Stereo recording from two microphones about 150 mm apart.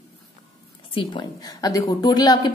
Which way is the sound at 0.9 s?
30° left (ahead or behind).